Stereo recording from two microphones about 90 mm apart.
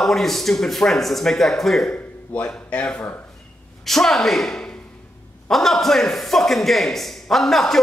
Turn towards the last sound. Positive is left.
turn(degrees=0)  # may be behind; listen again after turning